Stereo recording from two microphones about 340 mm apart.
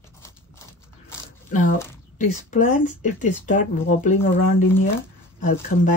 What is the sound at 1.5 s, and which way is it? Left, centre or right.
Speech, left.